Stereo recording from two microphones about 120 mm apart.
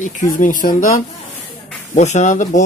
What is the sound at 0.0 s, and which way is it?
Speech, 90° left.